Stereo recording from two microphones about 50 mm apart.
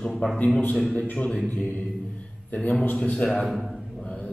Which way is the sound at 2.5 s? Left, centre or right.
Left.